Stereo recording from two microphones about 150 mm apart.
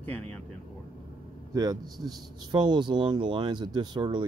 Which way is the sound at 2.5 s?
30° right (ahead or behind).